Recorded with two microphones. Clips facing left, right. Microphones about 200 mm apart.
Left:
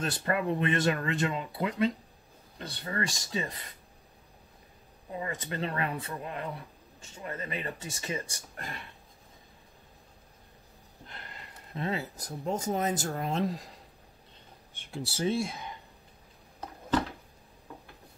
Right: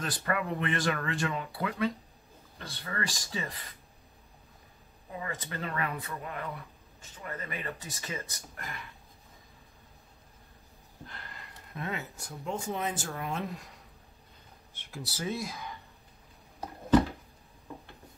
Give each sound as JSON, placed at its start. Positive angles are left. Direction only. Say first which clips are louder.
{"t": 0.0, "sound": "speech", "louder": "left 3 dB", "side_deg": 25}
{"t": 5.2, "sound": "speech", "louder": "left 3 dB", "side_deg": 25}
{"t": 11.1, "sound": "speech", "louder": "left 2 dB", "side_deg": 20}
{"t": 14.9, "sound": "speech", "louder": "left 5 dB", "side_deg": 30}